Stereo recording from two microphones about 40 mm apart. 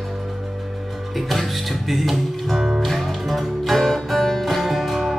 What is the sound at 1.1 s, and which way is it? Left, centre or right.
Music, centre.